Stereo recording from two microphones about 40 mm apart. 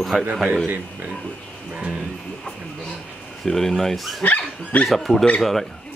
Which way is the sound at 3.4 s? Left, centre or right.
Centre.